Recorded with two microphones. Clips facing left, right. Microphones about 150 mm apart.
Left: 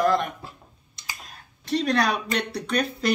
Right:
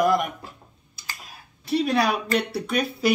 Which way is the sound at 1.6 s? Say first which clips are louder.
Right 1 dB; 5° right (ahead or behind).